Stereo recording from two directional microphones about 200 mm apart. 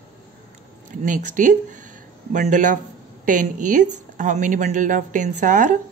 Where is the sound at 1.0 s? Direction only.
40° right (ahead or behind).